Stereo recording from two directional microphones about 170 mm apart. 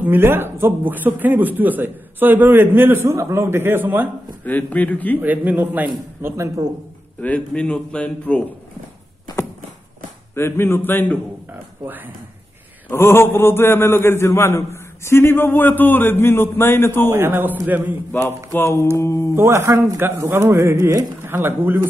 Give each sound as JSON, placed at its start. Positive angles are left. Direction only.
{"t": 0.0, "sound": "a man's voice", "side_deg": -10}
{"t": 4.5, "sound": "a man's voice", "side_deg": 10}
{"t": 5.2, "sound": "a man's voice", "side_deg": -10}
{"t": 7.2, "sound": "a man's voice", "side_deg": 10}
{"t": 10.3, "sound": "a man's voice", "side_deg": 15}
{"t": 11.5, "sound": "a man's voice", "side_deg": -10}
{"t": 12.9, "sound": "a man's voice", "side_deg": 15}
{"t": 17.1, "sound": "a man's voice", "side_deg": -10}
{"t": 18.5, "sound": "a man's voice", "side_deg": 15}
{"t": 19.3, "sound": "a man's voice", "side_deg": -15}